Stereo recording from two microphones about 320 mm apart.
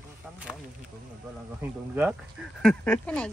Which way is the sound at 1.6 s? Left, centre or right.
Centre.